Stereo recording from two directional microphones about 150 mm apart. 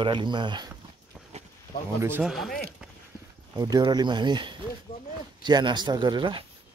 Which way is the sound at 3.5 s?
25° right (ahead or behind).